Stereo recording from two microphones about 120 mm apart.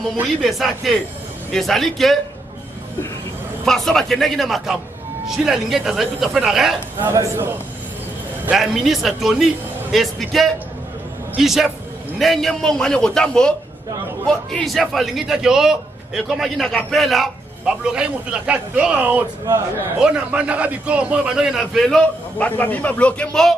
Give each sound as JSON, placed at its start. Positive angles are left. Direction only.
{"t": 0.0, "sound": "a man's voice", "side_deg": 0}
{"t": 3.6, "sound": "a man's voice", "side_deg": 5}
{"t": 7.0, "sound": "a man's voice", "side_deg": -20}
{"t": 8.5, "sound": "a man's voice", "side_deg": -5}